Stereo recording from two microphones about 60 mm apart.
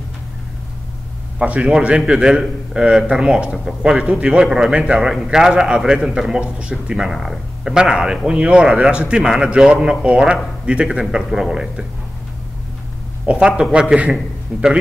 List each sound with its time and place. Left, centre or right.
1.4 s a man's voice: right
13.2 s speech: right